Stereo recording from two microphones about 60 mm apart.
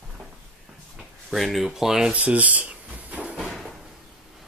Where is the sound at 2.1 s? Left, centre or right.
Right.